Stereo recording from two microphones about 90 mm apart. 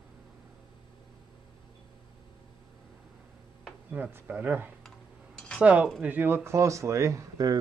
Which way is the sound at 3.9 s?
20° right (ahead or behind).